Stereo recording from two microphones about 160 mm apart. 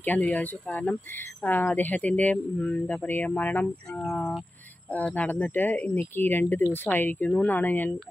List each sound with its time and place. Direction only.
0.0 s speech: 10° left (ahead or behind)